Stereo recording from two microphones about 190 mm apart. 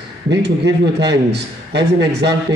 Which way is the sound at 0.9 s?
60° right (ahead or behind).